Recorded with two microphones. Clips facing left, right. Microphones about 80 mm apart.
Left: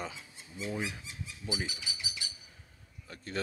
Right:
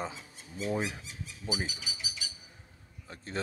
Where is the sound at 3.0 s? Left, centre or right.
Right.